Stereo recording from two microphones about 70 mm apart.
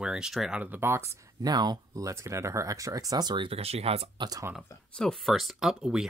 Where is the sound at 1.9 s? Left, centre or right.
Right.